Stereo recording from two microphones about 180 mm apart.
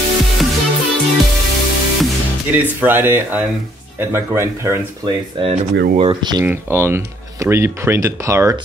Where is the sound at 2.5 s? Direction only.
10° right (ahead or behind).